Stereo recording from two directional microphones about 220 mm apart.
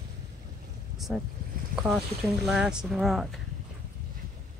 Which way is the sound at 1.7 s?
5° right (ahead or behind).